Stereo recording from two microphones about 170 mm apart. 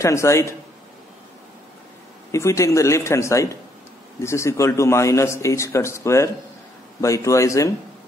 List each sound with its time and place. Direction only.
0.0 s a man's voice: 15° left (ahead or behind)
2.3 s a man's voice: 15° left (ahead or behind)